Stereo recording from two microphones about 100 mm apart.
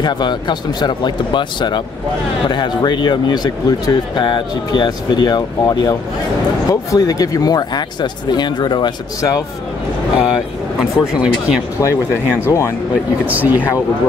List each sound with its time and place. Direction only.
0.0 s speech: 45° left (ahead or behind)
10.1 s speech: 5° right (ahead or behind)
11.8 s speech: 30° left (ahead or behind)
13.3 s speech: 15° right (ahead or behind)